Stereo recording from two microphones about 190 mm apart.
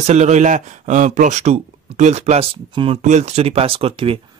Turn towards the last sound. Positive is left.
turn(degrees=-30)  # may be behind; listen again after turning